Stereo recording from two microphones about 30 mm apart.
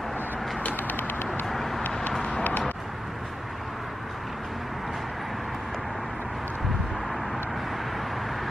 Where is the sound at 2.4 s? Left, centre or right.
Left.